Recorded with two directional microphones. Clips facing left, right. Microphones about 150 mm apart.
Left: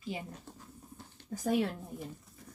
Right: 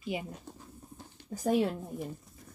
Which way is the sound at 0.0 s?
15° right (ahead or behind).